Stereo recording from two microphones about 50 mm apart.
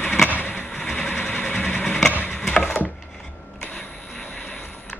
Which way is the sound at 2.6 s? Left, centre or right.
Left.